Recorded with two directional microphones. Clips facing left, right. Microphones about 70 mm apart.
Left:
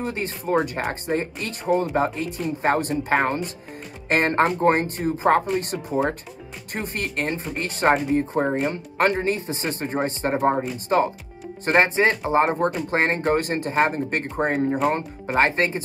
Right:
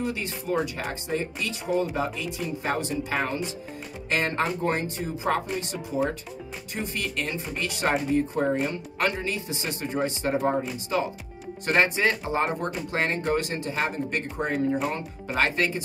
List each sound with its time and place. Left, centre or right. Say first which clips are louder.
0.0 s speech: left 3 dB; left
8.6 s speech: left 6 dB; left